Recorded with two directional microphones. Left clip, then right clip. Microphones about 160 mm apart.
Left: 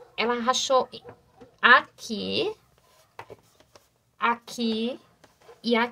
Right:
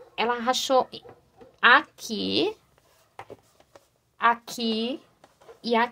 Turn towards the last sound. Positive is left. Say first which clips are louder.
# right 1 dB
turn(degrees=-20)  # may be behind; listen again after turning